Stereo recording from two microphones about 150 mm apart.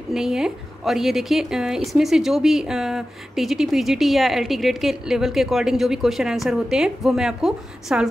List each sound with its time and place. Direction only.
0.1 s a woman's voice: 5° right (ahead or behind)